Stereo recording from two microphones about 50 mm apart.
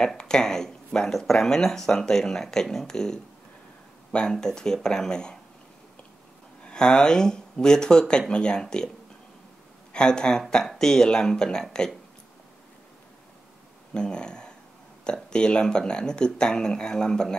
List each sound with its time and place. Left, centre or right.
0.0 s speech: centre
6.6 s speech: centre
9.9 s speech: centre
13.9 s a sound: centre
15.2 s speech: centre